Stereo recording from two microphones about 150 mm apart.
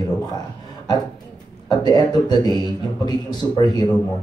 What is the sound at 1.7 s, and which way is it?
A man's voice, 25° left (ahead or behind).